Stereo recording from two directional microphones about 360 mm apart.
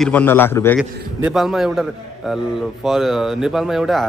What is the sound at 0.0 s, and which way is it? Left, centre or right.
A man's voice, centre.